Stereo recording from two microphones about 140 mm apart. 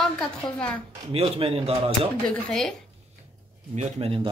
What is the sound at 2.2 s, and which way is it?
Speech, 5° left (ahead or behind).